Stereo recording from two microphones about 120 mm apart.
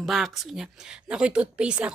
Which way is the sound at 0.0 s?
Centre (ahead or behind).